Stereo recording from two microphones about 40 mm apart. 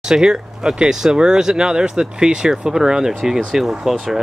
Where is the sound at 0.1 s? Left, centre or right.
Centre.